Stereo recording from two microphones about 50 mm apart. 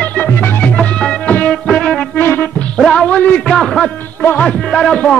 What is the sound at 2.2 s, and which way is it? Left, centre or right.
Music, left.